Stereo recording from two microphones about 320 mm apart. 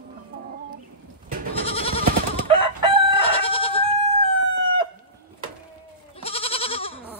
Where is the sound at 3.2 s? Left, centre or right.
Centre.